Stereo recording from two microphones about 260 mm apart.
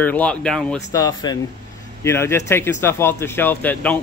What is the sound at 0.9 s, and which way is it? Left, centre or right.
Speech, centre.